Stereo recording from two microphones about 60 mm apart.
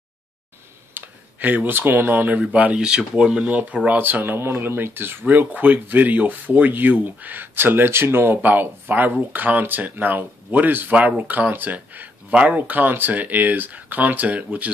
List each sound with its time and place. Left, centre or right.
0.9 s speech: right; by 3.4 s centre
3.4 s speech: right